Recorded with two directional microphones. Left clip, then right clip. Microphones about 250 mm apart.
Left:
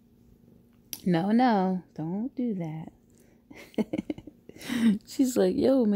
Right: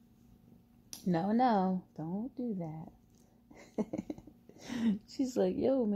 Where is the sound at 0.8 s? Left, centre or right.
Left.